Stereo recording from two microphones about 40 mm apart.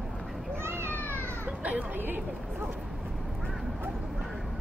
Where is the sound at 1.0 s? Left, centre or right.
Right.